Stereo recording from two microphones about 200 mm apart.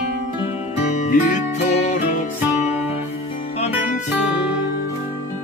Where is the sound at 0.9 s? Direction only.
35° left (ahead or behind).